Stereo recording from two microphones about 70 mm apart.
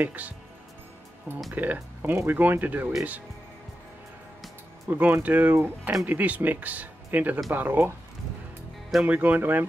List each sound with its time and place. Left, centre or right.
0.0 s speech: right
1.5 s speech: right
4.8 s speech: right
6.0 s speech: right
9.0 s speech: right